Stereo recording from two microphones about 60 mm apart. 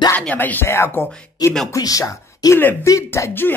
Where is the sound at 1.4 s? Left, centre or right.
Left.